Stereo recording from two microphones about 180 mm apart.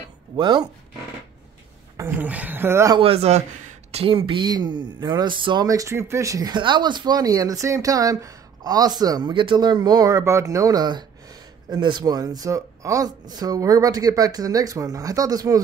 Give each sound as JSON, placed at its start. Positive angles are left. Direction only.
{"t": 0.4, "sound": "speech", "side_deg": -25}
{"t": 2.0, "sound": "speech", "side_deg": -10}
{"t": 3.0, "sound": "speech", "side_deg": -35}